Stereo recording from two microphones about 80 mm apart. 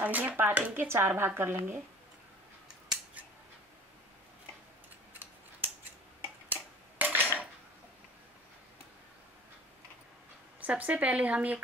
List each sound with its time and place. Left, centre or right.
0.0 s speech: right
6.5 s a sound: right
10.6 s speech: centre